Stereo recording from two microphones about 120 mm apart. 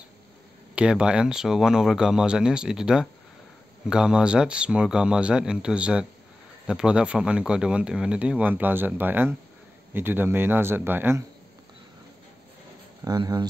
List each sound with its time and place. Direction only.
0.7 s speech: 10° right (ahead or behind)
13.0 s speech: 35° right (ahead or behind)